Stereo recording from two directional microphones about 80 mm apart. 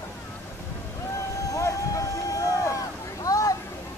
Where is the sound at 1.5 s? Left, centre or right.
Left.